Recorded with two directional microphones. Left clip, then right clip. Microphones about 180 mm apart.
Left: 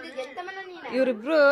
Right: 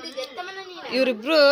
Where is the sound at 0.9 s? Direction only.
Centre (ahead or behind).